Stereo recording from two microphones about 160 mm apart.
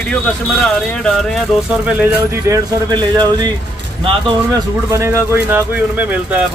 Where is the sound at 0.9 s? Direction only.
5° left (ahead or behind).